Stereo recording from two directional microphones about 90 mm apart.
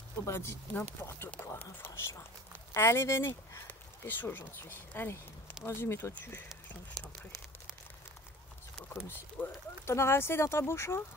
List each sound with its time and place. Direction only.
0.2 s speech: 25° left (ahead or behind)
8.8 s speech: 25° left (ahead or behind)